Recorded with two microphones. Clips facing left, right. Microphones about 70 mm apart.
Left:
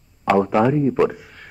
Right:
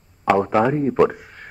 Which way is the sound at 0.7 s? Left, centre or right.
Right.